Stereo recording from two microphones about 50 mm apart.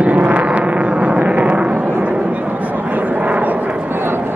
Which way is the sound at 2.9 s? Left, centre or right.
Right.